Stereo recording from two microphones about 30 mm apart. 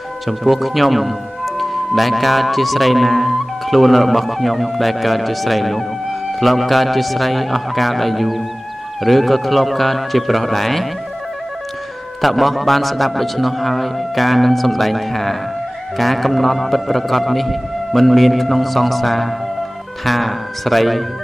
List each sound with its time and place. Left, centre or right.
0.3 s speech: centre
12.2 s speech: centre